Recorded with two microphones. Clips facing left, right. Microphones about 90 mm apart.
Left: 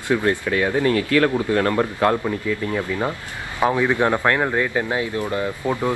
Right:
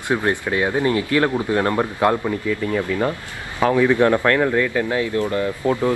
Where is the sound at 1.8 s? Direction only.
5° right (ahead or behind).